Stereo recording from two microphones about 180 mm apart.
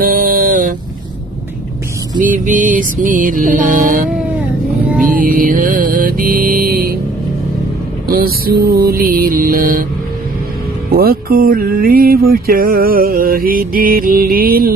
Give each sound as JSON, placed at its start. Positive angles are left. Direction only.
{"t": 0.0, "sound": "a sound", "side_deg": -50}
{"t": 2.1, "sound": "music", "side_deg": -45}
{"t": 5.1, "sound": "music", "side_deg": -50}
{"t": 8.1, "sound": "music", "side_deg": -55}
{"t": 10.9, "sound": "music", "side_deg": -55}